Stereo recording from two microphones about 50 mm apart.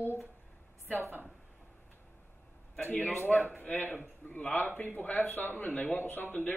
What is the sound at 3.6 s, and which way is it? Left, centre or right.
A man's voice, left.